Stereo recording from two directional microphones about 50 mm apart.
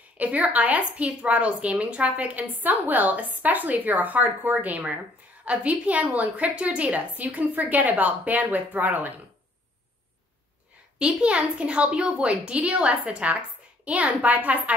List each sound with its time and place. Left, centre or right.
0.2 s a woman's voice: right
11.0 s a woman's voice: right